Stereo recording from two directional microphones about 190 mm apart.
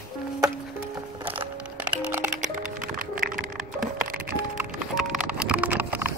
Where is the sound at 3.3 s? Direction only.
45° right (ahead or behind).